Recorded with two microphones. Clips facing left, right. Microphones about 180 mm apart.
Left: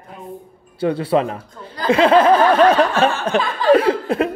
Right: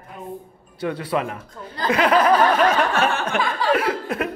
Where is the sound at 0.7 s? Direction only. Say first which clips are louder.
Left 6 dB; 30° left (ahead or behind).